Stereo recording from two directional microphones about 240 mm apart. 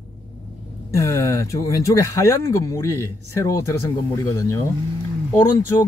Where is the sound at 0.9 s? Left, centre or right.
Centre.